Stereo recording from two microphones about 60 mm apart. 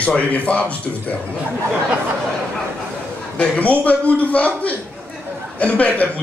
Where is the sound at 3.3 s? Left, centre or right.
Left.